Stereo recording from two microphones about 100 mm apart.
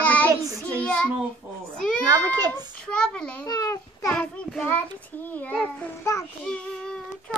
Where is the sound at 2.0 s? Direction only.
40° right (ahead or behind).